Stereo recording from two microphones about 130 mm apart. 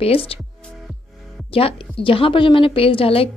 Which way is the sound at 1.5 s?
45° left (ahead or behind).